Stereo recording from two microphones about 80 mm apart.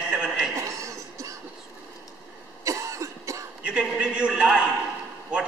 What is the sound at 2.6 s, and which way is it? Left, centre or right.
Cough, right.